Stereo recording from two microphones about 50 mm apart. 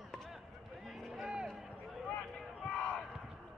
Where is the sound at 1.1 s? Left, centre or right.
Centre.